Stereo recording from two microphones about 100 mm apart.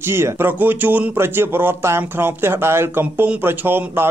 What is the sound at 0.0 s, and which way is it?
A man's voice, 25° right (ahead or behind).